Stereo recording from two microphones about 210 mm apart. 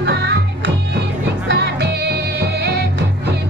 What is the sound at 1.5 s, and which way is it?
Music, 55° right (ahead or behind).